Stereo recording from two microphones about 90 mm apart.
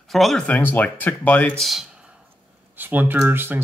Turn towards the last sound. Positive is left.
turn(degrees=-25)  # may be behind; listen again after turning